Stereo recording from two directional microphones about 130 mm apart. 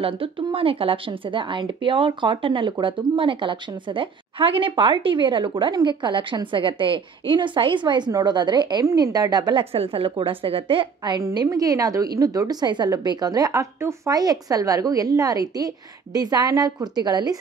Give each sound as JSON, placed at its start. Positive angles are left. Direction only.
{"t": 0.0, "sound": "speech", "side_deg": -45}
{"t": 11.1, "sound": "a woman's voice", "side_deg": -25}